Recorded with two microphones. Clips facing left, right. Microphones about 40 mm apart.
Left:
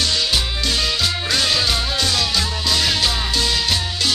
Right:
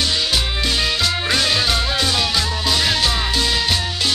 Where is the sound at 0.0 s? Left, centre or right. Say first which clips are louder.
Even; centre.